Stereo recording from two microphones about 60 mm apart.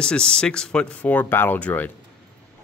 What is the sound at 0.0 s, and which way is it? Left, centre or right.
Speech, centre.